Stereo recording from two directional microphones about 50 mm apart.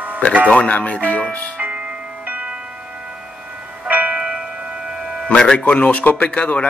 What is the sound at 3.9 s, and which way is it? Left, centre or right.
Music, right.